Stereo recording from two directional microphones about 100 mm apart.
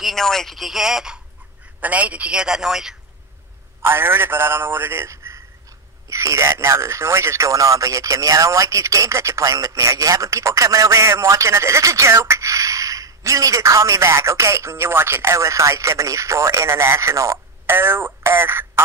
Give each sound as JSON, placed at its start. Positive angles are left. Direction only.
{"t": 0.0, "sound": "a man's voice", "side_deg": 5}
{"t": 3.8, "sound": "a man's voice", "side_deg": -25}